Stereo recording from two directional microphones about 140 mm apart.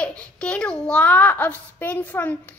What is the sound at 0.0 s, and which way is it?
A child's voice, 5° left (ahead or behind).